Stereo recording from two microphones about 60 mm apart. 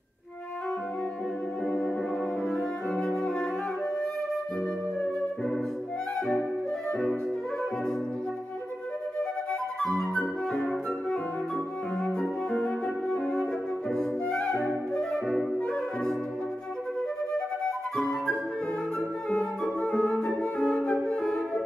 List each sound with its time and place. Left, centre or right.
2.4 s brass instrument: centre
6.9 s music: centre
9.5 s flute: centre
12.2 s flute: centre
15.0 s music: centre
17.3 s flute: centre